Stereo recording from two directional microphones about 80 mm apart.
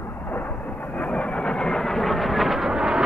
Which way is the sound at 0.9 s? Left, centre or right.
Centre.